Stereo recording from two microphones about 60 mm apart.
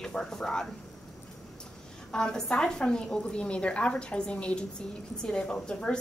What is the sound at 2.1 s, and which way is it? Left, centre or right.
A woman's voice, centre.